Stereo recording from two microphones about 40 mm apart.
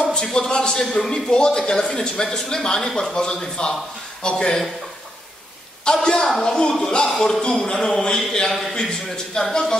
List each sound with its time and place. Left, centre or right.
0.0 s a man's voice: centre
5.9 s a man's voice: centre